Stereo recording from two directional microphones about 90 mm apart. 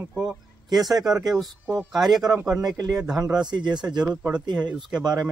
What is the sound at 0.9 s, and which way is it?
Speech, 45° right (ahead or behind).